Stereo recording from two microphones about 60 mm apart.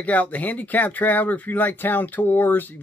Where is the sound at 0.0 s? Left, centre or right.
Left.